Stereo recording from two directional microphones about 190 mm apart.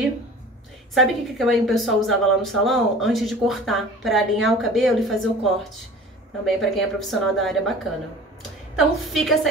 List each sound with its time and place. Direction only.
0.9 s a woman's voice: centre (ahead or behind)
8.7 s a woman's voice: centre (ahead or behind)